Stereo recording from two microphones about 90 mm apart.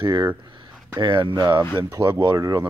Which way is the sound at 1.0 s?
55° right (ahead or behind).